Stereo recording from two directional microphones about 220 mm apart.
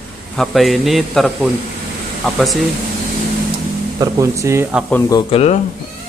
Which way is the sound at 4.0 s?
15° right (ahead or behind).